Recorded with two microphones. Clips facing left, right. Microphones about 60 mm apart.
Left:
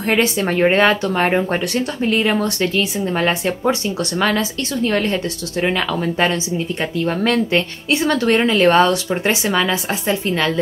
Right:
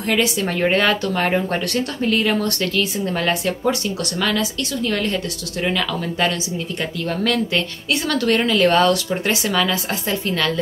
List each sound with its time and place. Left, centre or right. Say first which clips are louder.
0.0 s speech: left 3 dB; left